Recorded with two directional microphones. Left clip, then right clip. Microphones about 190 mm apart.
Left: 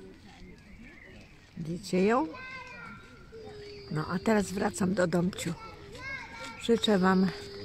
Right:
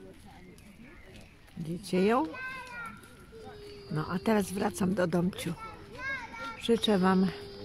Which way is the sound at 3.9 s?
Centre (ahead or behind).